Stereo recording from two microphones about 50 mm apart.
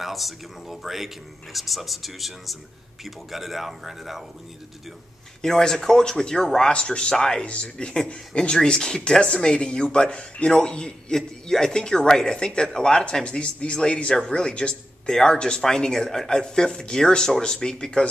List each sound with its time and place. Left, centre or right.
0.0 s speech: centre
5.4 s speech: centre